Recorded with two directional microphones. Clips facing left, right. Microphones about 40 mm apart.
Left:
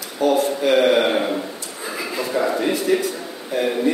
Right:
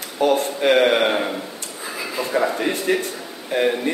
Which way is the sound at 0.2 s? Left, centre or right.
Right.